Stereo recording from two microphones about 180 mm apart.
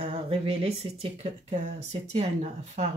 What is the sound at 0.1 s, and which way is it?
Speech, 30° right (ahead or behind).